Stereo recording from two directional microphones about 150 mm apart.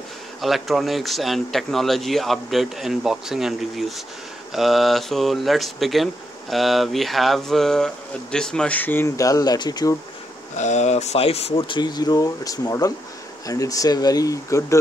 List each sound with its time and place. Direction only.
0.4 s speech: centre (ahead or behind); by 9.9 s 25° left (ahead or behind)
10.6 s speech: 50° left (ahead or behind); by 14.8 s 20° left (ahead or behind)